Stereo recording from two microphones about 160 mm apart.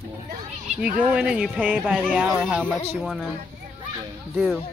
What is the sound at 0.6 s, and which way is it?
Speech, 5° right (ahead or behind).